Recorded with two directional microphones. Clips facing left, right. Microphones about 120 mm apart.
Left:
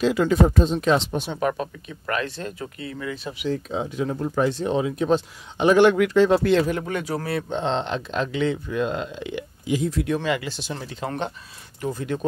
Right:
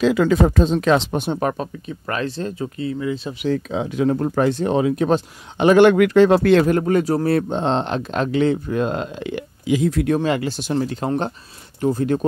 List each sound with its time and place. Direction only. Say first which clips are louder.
0.5 s speech: right 3 dB; 90° right
1.1 s speech: right 3 dB; 45° right (ahead or behind)
1.5 s speech: right 2 dB; 30° right (ahead or behind)
3.4 s speech: right 4 dB; 85° right; by 6.8 s 60° right (ahead or behind)
6.9 s speech: right 9 dB; 40° right (ahead or behind); by 9.4 s 55° right (ahead or behind)
9.7 s speech: right 5 dB; 75° right (ahead or behind); by 12.3 s 45° right (ahead or behind)